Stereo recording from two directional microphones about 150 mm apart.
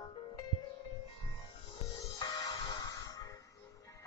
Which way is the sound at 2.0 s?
25° left (ahead or behind).